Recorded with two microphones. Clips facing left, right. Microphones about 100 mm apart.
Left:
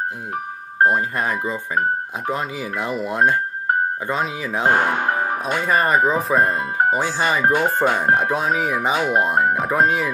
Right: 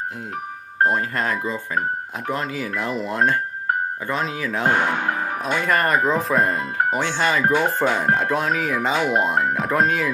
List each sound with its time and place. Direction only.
0.8 s speech: 10° left (ahead or behind)
5.4 s speech: 10° left (ahead or behind)
6.2 s speech: centre (ahead or behind)